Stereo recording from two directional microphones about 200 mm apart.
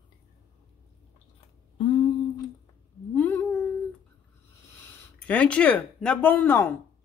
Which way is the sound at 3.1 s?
10° left (ahead or behind).